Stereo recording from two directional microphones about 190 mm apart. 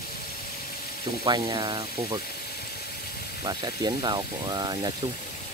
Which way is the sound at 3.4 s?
20° right (ahead or behind).